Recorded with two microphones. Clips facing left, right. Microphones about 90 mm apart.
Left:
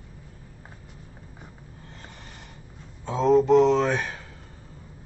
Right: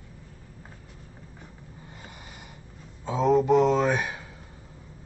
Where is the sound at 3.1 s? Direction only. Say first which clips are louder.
Left 2 dB; 5° right (ahead or behind).